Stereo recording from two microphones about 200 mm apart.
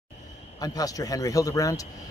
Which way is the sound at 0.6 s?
20° left (ahead or behind).